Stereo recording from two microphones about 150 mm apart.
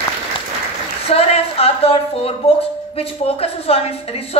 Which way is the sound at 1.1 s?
40° left (ahead or behind).